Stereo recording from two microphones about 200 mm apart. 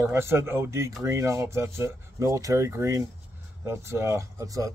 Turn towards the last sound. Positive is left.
turn(degrees=-15)  # may be behind; listen again after turning